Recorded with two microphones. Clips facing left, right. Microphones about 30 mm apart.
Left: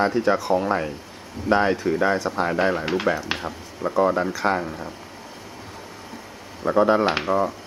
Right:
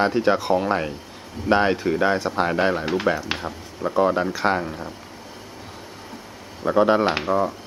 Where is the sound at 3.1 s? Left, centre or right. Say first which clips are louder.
Right 1 dB; centre.